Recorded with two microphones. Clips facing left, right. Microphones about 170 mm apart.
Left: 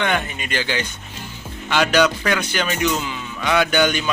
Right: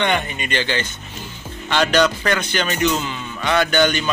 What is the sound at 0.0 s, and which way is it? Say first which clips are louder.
Speech: right 1 dB; centre (ahead or behind).